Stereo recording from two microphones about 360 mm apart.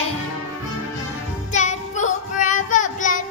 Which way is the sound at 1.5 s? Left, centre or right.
Centre.